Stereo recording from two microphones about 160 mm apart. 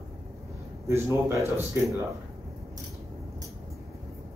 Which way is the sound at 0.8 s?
15° right (ahead or behind).